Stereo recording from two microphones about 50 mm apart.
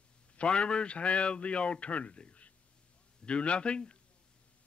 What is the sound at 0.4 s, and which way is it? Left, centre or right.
A man's voice, centre.